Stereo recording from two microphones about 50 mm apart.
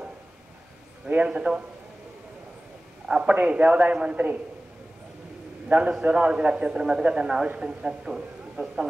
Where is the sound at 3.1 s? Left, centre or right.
Centre.